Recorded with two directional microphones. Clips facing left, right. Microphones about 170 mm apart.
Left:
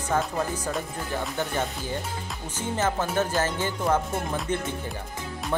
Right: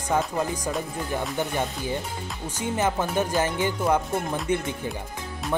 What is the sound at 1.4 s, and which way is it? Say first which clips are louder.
Speech: right 1 dB; 15° right (ahead or behind).